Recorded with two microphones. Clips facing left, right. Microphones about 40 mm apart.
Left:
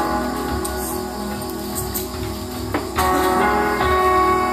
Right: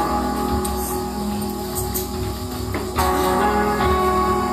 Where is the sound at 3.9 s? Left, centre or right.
Left.